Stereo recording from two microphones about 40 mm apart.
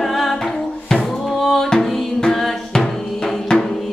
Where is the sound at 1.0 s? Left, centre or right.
Centre.